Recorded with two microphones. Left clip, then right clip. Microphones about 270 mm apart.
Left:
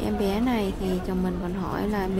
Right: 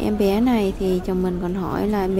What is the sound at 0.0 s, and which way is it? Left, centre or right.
A woman's voice, centre.